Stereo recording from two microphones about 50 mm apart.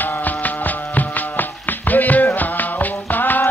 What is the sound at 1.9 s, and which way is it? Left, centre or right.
Music, left.